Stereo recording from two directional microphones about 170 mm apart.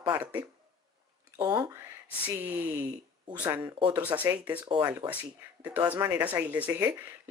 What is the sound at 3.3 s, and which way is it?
Speech, 10° right (ahead or behind).